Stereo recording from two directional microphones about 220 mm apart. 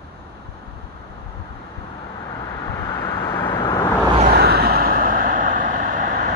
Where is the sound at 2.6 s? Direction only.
10° left (ahead or behind).